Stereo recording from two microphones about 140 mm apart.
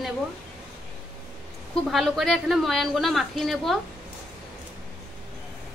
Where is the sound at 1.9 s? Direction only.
Centre (ahead or behind).